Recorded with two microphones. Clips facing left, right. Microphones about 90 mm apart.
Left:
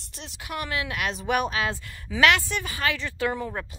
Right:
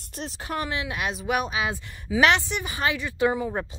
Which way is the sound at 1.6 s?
15° right (ahead or behind).